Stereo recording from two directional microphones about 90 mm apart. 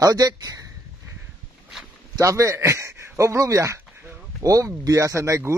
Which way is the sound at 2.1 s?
35° right (ahead or behind).